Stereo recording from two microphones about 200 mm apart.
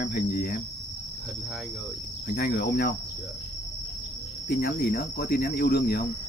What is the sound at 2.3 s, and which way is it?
Cricket, 50° left (ahead or behind).